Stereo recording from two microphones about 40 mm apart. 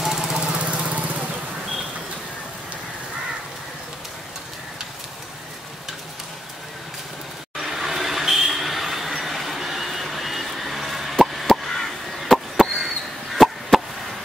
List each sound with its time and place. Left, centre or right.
0.0 s vehicle: centre
0.6 s lawn mower: right
7.6 s a sound: centre